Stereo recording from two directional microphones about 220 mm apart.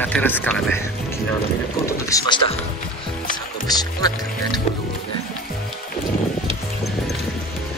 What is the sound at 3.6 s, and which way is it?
Speech, 20° left (ahead or behind).